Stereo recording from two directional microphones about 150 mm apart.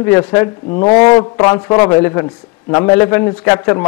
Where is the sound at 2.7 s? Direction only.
25° left (ahead or behind).